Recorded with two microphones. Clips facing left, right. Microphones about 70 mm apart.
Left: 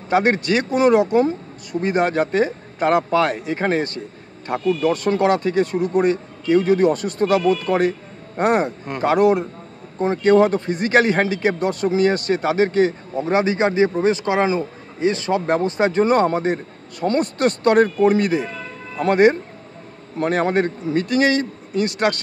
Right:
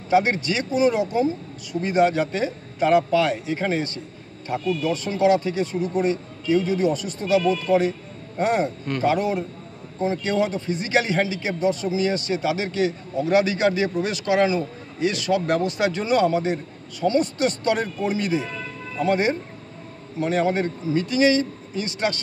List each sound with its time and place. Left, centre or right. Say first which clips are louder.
0.1 s a man's voice: left 3 dB; left